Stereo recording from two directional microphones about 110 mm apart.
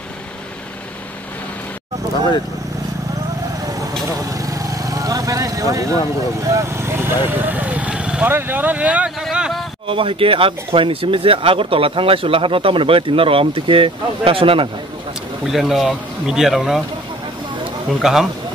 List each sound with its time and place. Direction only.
4.3 s vehicle: 30° right (ahead or behind)
6.4 s speech: 25° right (ahead or behind); by 9.1 s 10° right (ahead or behind)
9.2 s a sound: 5° right (ahead or behind)
9.8 s speech: 55° right (ahead or behind)
15.4 s speech: 5° right (ahead or behind)
18.0 s speech: 5° right (ahead or behind)